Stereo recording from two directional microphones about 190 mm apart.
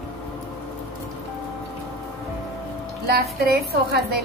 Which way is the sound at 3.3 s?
55° right (ahead or behind).